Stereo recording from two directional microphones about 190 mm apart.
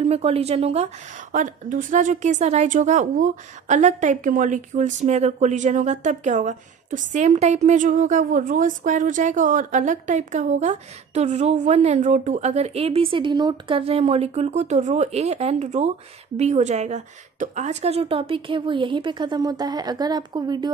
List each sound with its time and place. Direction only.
0.0 s a woman's voice: 30° right (ahead or behind)